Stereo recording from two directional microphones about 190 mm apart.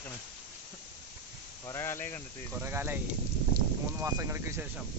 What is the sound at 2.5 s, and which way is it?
Speech, 10° right (ahead or behind).